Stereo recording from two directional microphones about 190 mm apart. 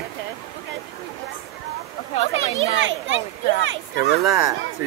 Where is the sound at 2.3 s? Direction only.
80° right.